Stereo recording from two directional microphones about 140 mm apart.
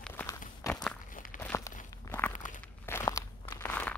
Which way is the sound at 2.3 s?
65° left (ahead or behind).